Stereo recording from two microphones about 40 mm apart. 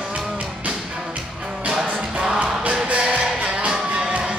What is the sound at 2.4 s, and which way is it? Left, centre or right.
Music, right.